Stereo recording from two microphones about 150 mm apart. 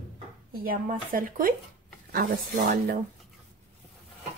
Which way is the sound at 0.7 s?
70° right (ahead or behind).